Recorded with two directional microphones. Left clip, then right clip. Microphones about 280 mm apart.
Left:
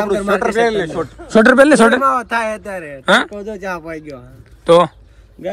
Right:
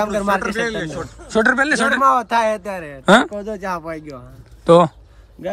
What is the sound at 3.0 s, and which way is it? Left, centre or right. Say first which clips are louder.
Speech: even; centre.